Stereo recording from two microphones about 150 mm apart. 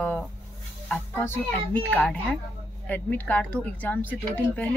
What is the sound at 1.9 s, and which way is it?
Speech, 10° left (ahead or behind).